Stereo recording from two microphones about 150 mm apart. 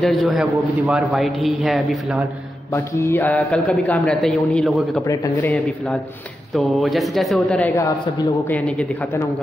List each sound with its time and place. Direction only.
0.0 s a man's voice: centre (ahead or behind)
2.7 s a man's voice: 15° left (ahead or behind)
5.0 s speech: 25° left (ahead or behind)
6.5 s a man's voice: centre (ahead or behind)